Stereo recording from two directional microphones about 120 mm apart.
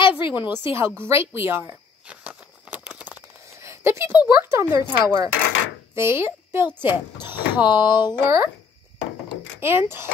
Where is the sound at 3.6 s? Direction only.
20° right (ahead or behind).